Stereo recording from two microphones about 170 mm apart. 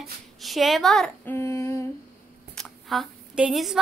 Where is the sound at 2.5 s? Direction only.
Centre (ahead or behind).